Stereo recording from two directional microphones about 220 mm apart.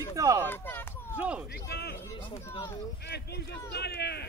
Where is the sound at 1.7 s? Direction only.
45° left (ahead or behind).